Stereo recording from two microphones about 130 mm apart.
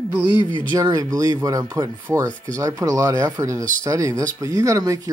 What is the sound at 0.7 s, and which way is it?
Speech, 30° right (ahead or behind).